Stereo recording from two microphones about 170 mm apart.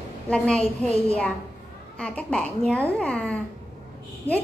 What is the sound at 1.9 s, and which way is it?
A woman's voice, 5° left (ahead or behind).